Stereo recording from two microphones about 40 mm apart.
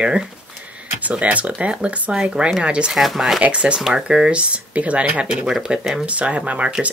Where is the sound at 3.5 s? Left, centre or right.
Right.